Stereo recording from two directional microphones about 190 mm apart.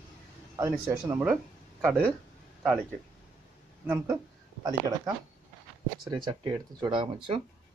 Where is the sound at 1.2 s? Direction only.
Centre (ahead or behind).